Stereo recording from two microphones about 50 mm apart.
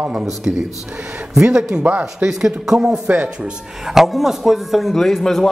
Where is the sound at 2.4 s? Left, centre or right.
Centre.